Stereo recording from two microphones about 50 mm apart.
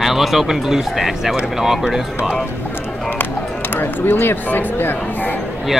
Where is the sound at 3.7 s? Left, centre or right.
Left.